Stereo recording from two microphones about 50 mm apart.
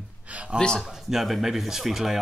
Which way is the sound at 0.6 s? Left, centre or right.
Centre.